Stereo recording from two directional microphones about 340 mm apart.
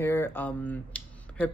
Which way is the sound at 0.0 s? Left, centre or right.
Centre.